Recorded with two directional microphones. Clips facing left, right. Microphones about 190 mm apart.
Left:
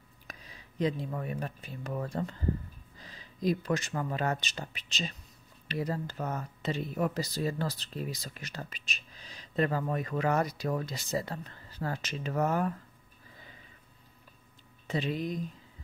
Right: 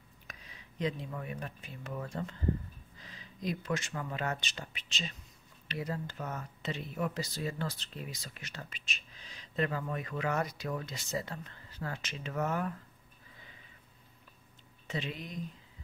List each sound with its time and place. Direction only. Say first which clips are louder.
0.3 s speech: left 4 dB; 35° left (ahead or behind)
14.9 s speech: left 7 dB; 40° left (ahead or behind)